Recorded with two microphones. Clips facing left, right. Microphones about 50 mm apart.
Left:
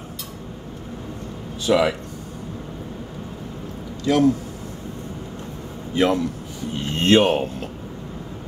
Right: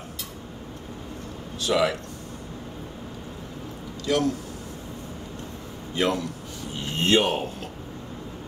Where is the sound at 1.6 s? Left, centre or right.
Centre.